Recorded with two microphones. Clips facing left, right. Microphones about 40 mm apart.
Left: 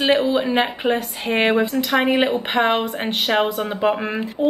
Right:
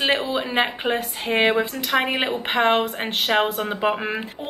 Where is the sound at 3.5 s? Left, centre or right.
Centre.